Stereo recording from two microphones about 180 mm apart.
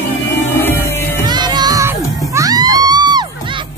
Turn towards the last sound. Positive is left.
turn(degrees=-25)  # may be behind; listen again after turning